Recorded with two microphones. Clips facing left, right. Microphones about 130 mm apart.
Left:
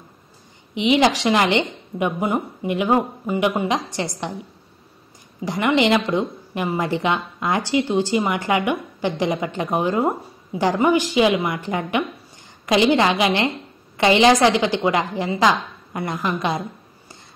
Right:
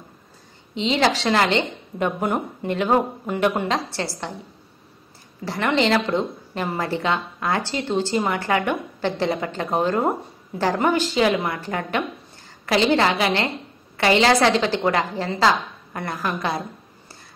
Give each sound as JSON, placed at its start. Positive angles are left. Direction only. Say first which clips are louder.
{"t": 0.7, "sound": "a woman's voice", "louder": "left 3 dB", "side_deg": 15}
{"t": 5.4, "sound": "a woman's voice", "louder": "left 2 dB", "side_deg": 15}